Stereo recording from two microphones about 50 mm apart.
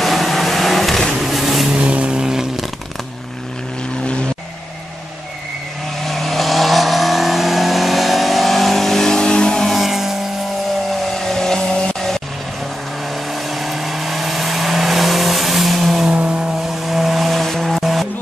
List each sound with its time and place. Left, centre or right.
0.0 s vehicle: centre
1.7 s vehicle: right
6.0 s vehicle: centre
9.7 s music: centre
11.1 s vehicle: centre
16.1 s vehicle: right
16.8 s vehicle: centre